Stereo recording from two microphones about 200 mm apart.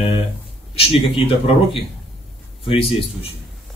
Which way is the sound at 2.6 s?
25° left (ahead or behind).